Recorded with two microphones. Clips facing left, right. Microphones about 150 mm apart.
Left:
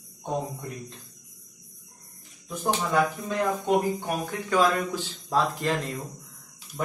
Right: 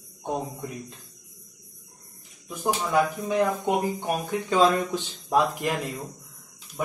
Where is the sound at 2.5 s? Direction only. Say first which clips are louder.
Right 1 dB; 15° right (ahead or behind).